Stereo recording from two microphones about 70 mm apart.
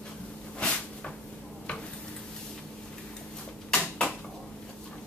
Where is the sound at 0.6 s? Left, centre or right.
Centre.